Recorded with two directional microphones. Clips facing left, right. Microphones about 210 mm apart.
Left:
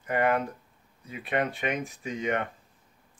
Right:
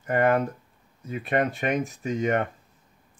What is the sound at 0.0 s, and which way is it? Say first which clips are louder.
Speech: right 4 dB; 45° right (ahead or behind).